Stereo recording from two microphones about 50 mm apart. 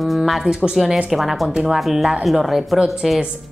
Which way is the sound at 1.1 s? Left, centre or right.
Centre.